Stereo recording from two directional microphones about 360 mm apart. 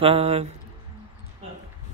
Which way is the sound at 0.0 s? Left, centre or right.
Centre.